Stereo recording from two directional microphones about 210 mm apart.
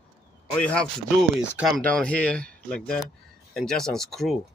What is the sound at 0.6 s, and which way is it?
Speech, 5° left (ahead or behind).